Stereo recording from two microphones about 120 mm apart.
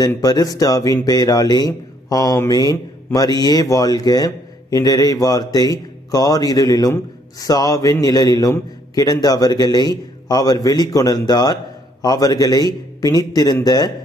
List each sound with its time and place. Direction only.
0.2 s a man's voice: 30° left (ahead or behind)